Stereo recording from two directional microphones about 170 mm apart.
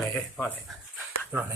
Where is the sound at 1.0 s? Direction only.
10° right (ahead or behind).